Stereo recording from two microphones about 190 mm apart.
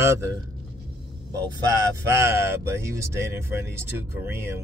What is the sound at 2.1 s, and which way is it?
Speech, 15° right (ahead or behind).